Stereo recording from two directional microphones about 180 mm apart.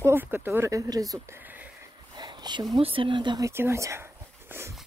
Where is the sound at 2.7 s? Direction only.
30° right (ahead or behind).